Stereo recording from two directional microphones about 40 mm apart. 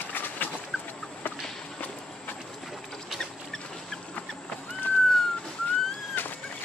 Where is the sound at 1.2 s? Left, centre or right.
Left.